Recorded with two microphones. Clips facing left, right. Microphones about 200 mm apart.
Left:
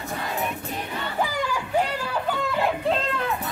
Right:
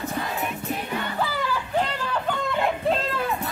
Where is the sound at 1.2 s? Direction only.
15° left (ahead or behind).